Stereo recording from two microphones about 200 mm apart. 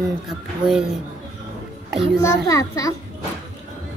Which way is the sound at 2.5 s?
15° left (ahead or behind).